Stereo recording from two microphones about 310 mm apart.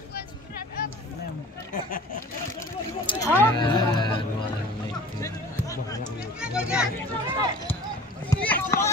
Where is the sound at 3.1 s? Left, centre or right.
Centre.